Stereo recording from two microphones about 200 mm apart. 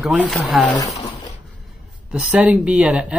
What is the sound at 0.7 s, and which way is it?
Speech, 20° left (ahead or behind).